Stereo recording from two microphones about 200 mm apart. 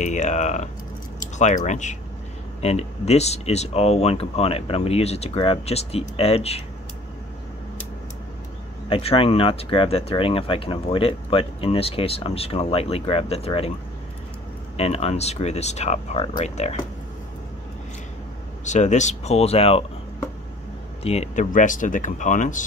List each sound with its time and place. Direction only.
0.0 s speech: 35° left (ahead or behind)
8.8 s speech: 30° left (ahead or behind)
14.8 s speech: 30° left (ahead or behind)
18.6 s speech: 35° left (ahead or behind)
21.0 s speech: 30° left (ahead or behind)